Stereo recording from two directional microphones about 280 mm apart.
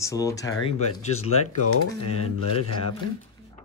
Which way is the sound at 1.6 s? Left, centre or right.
Left.